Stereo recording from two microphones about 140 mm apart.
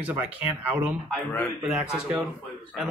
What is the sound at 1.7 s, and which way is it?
Speech, 10° right (ahead or behind).